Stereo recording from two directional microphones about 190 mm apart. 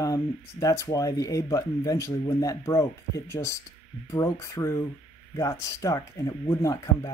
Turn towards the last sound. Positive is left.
turn(degrees=15)  # may be behind; listen again after turning